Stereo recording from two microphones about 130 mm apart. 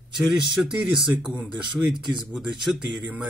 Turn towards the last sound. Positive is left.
turn(degrees=0)  # may be behind; listen again after turning